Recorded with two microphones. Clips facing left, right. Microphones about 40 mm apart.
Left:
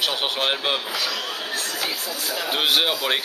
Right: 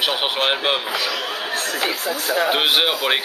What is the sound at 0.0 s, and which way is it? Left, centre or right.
A man's voice, right.